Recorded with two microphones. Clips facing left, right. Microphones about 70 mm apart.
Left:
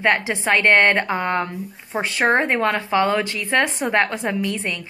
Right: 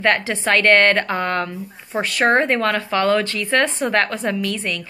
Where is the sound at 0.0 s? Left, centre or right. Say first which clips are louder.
Right 1 dB; centre.